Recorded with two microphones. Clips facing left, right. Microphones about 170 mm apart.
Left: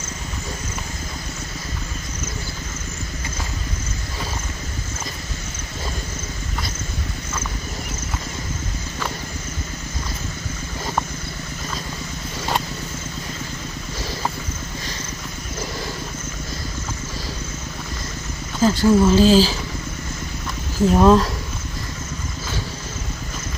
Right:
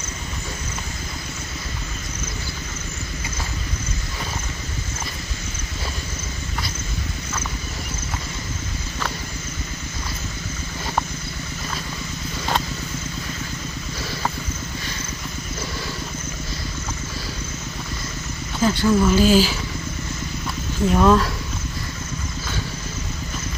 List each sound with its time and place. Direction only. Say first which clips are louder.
18.6 s cricket: left 3 dB; 35° left (ahead or behind)
18.9 s speech: left 2 dB; 30° left (ahead or behind)
20.9 s speech: left 2 dB; 30° left (ahead or behind)